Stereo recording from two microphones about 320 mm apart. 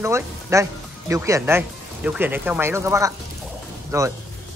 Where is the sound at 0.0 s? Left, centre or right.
Centre.